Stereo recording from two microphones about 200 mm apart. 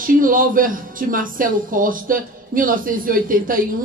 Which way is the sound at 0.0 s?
45° right (ahead or behind).